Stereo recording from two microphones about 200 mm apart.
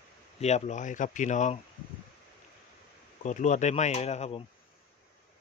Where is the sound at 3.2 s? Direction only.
35° left (ahead or behind).